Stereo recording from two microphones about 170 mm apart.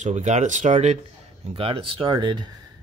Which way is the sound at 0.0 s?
40° right (ahead or behind).